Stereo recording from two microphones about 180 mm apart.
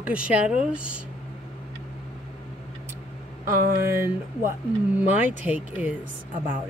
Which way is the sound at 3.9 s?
15° right (ahead or behind).